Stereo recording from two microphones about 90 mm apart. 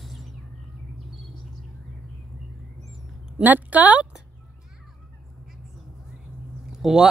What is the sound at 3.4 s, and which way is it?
Speech, 20° right (ahead or behind).